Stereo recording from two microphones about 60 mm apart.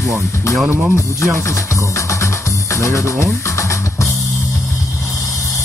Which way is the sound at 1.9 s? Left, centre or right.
Left.